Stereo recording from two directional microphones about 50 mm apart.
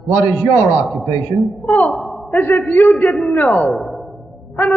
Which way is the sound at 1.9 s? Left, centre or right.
Centre.